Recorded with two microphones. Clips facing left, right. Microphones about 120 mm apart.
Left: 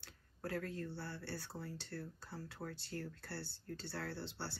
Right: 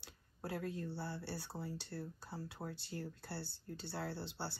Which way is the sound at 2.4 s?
10° right (ahead or behind).